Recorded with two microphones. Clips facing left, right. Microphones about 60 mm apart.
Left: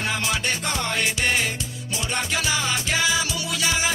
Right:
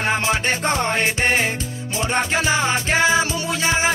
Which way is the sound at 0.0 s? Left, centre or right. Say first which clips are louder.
Right 5 dB; right.